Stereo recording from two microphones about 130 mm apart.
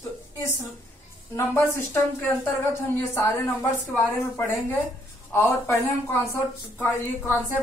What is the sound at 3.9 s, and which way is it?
Speech, 20° left (ahead or behind).